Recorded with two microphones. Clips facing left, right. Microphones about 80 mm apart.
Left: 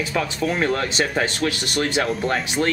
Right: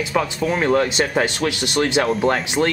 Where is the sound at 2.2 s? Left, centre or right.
Right.